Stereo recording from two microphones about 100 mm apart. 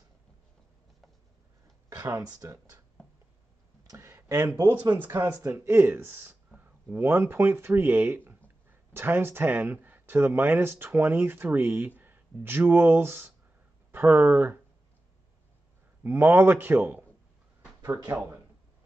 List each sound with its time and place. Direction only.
1.9 s speech: 30° right (ahead or behind)
3.9 s a sound: 30° right (ahead or behind)
4.5 s speech: 20° right (ahead or behind)
16.0 s speech: 20° right (ahead or behind)